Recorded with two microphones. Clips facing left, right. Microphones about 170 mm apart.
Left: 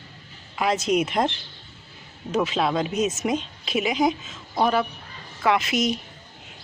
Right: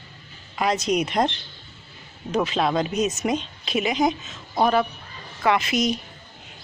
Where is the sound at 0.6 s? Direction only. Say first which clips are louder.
Even; 5° left (ahead or behind).